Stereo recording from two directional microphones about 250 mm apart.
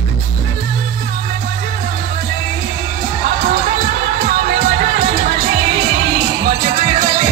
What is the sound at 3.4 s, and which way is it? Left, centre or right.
Music, right.